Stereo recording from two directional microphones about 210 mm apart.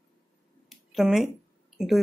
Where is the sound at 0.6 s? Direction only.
Centre (ahead or behind).